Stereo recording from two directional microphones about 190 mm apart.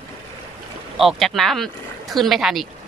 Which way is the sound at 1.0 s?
Centre (ahead or behind).